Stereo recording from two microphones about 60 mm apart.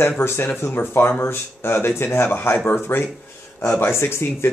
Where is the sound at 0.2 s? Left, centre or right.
Left.